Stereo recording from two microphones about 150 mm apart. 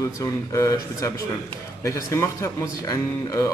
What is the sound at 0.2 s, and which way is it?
Speech, 20° left (ahead or behind).